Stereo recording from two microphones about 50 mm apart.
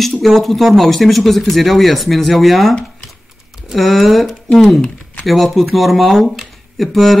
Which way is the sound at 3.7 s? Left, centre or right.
Centre.